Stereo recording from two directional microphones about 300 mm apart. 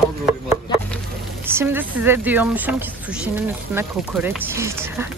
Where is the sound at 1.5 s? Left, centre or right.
Centre.